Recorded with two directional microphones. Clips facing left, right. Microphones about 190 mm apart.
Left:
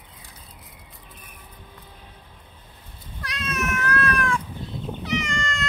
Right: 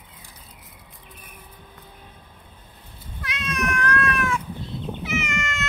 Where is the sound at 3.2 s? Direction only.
Centre (ahead or behind).